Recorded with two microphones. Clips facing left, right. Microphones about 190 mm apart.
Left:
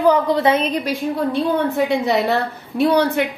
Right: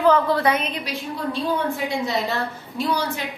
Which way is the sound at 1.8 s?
65° left (ahead or behind).